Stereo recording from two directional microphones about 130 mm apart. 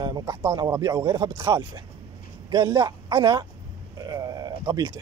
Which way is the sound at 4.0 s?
25° right (ahead or behind).